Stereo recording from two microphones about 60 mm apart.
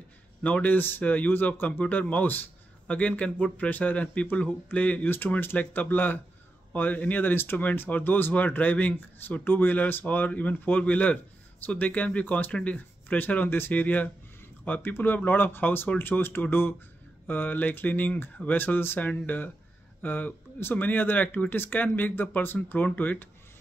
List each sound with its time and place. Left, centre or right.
0.4 s speech: left